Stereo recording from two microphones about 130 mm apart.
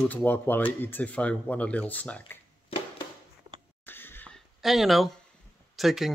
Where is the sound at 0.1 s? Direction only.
15° left (ahead or behind).